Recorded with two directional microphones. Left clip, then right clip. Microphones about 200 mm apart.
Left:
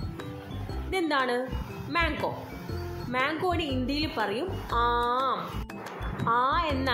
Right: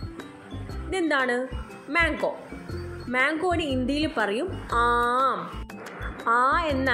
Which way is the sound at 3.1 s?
10° right (ahead or behind).